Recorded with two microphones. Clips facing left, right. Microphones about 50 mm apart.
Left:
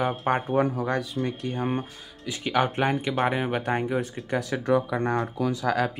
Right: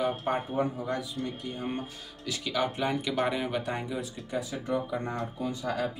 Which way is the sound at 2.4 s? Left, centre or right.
Left.